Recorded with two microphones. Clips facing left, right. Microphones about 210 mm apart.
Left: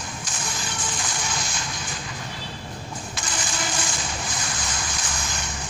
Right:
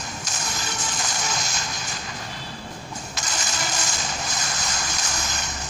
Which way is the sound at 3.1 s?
40° right (ahead or behind).